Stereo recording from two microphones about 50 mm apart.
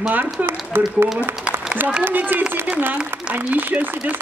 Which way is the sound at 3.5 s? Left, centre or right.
Right.